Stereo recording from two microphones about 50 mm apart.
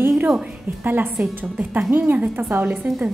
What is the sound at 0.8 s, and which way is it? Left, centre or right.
Speech, right.